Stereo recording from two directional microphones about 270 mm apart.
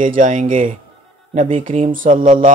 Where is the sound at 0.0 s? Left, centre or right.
Right.